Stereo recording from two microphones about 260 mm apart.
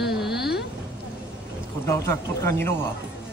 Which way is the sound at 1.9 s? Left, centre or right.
Centre.